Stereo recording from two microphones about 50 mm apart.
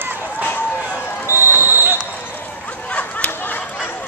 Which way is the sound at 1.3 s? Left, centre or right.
Left.